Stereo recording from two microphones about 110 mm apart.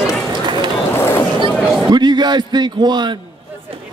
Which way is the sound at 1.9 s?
40° right (ahead or behind).